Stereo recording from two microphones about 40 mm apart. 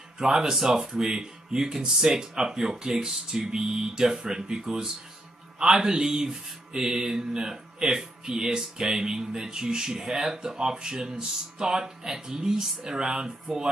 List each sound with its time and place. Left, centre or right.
0.2 s speech: centre